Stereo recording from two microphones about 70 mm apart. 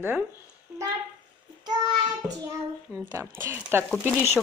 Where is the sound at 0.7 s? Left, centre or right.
Right.